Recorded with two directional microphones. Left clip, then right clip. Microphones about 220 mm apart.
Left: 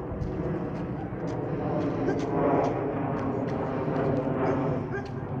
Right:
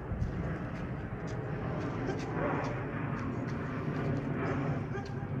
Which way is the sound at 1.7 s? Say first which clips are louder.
Left 9 dB; 30° left (ahead or behind).